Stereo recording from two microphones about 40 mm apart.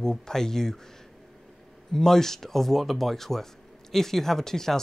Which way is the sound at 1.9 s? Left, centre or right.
Centre.